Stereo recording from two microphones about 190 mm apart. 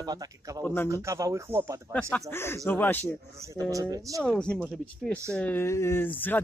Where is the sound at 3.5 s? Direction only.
15° right (ahead or behind).